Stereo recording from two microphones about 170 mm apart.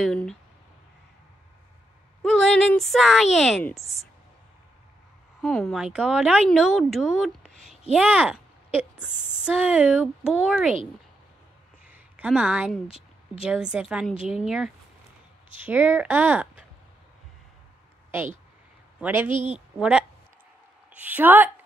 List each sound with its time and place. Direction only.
0.0 s speech: 5° left (ahead or behind)
2.2 s a sound: centre (ahead or behind)
3.3 s speech: centre (ahead or behind)
5.4 s speech: 5° left (ahead or behind)
11.8 s a sound: 5° right (ahead or behind)
13.4 s speech: 5° right (ahead or behind)
18.9 s speech: 10° right (ahead or behind)
19.3 s a woman's voice: 40° right (ahead or behind)
19.8 s speech: 5° right (ahead or behind)